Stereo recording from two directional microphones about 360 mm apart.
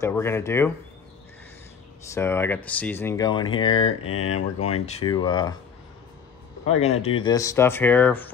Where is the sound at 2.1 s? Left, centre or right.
Centre.